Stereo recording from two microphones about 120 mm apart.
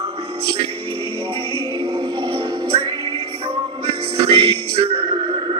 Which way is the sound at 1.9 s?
35° right (ahead or behind).